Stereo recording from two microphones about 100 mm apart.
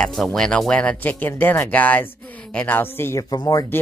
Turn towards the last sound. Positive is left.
turn(degrees=35)  # may be behind; listen again after turning